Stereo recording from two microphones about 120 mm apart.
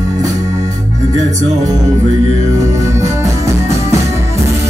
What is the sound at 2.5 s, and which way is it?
Music, 25° right (ahead or behind).